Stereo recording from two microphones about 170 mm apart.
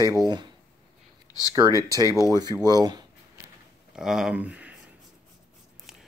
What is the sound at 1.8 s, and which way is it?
Speech, 20° right (ahead or behind).